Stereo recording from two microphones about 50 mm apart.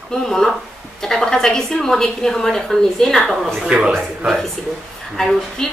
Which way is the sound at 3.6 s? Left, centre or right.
Centre.